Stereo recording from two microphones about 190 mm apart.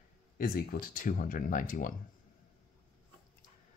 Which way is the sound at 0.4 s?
50° left (ahead or behind).